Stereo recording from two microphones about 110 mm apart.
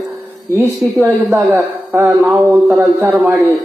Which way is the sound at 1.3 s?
20° right (ahead or behind).